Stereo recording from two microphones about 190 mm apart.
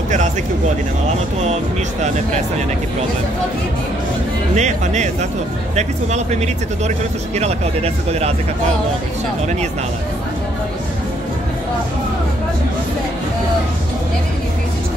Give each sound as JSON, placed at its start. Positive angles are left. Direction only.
{"t": 4.6, "sound": "speech", "side_deg": -35}